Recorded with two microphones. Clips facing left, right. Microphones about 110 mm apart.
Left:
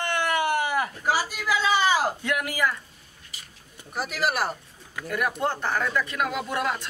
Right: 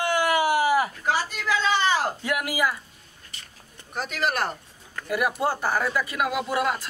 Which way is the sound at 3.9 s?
5° left (ahead or behind).